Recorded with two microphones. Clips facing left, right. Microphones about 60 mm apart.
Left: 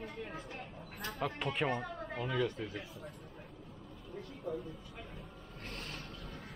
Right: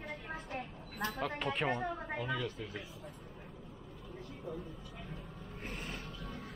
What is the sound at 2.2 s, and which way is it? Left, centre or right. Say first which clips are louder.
Speech: left 7 dB; centre.